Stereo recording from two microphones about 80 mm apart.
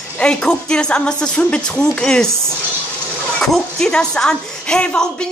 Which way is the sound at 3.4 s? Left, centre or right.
Centre.